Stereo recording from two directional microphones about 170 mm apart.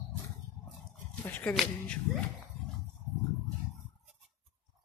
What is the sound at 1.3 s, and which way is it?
Speech, 10° left (ahead or behind).